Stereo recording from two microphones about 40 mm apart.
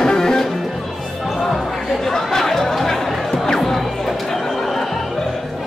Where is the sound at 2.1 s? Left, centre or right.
Centre.